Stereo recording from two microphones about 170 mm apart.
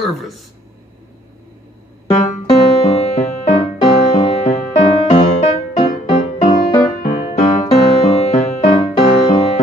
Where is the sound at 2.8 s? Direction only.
40° left (ahead or behind).